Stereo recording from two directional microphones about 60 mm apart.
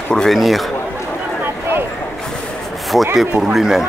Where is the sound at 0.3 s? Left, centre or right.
Centre.